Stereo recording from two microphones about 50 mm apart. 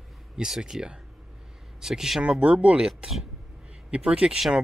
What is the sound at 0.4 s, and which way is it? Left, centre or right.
Speech, centre.